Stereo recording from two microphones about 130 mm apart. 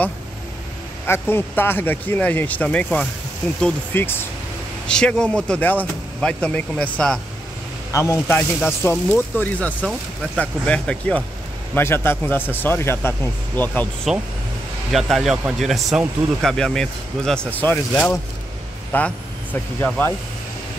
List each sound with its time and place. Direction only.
1.0 s speech: 20° left (ahead or behind)
4.8 s speech: 5° left (ahead or behind)
7.9 s speech: 20° left (ahead or behind)
14.1 s speech: centre (ahead or behind)